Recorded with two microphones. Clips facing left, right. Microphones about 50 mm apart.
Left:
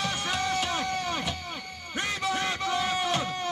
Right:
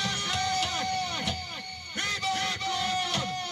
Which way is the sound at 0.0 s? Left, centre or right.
Left.